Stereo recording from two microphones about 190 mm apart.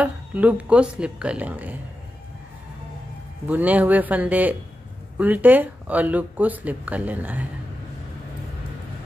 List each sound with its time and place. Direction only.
0.0 s speech: 5° right (ahead or behind)
3.4 s speech: 10° right (ahead or behind)